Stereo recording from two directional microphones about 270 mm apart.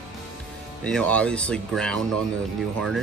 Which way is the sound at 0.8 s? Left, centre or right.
Centre.